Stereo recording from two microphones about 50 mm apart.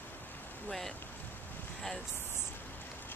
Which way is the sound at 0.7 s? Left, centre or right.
Centre.